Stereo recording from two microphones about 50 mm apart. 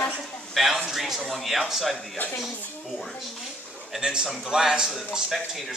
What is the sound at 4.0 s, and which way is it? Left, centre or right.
Speech, centre.